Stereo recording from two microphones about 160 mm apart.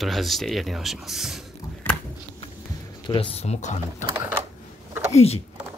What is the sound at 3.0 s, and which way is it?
Speech, 30° left (ahead or behind).